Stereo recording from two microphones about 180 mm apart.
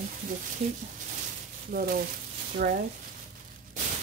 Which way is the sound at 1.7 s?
55° right (ahead or behind).